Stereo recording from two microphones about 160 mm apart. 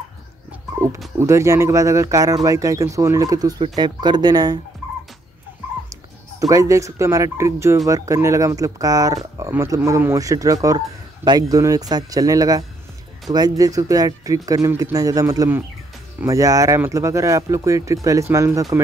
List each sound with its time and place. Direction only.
0.5 s dog: 15° right (ahead or behind)
1.2 s speech: 20° right (ahead or behind)
6.4 s speech: 20° right (ahead or behind)